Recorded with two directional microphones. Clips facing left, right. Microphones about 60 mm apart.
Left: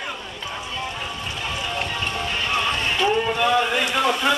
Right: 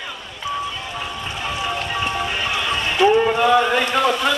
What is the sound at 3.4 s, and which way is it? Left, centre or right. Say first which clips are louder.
Speech: right 4 dB; centre.